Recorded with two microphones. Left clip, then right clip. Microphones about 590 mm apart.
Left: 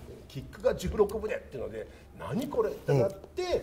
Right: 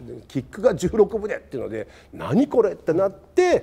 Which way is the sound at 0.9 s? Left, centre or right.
Right.